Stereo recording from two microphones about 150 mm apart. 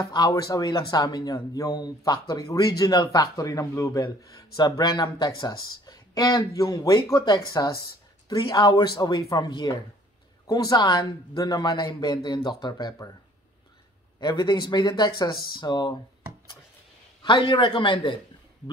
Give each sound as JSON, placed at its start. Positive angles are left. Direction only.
{"t": 0.0, "sound": "speech", "side_deg": 25}
{"t": 14.2, "sound": "speech", "side_deg": 30}
{"t": 17.2, "sound": "a man's voice", "side_deg": 30}